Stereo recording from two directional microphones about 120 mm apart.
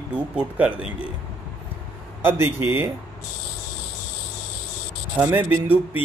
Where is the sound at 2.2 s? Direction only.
20° right (ahead or behind).